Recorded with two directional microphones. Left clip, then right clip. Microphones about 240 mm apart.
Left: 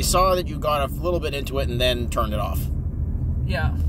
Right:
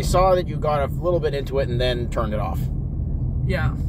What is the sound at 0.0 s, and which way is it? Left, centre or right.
Speech, left.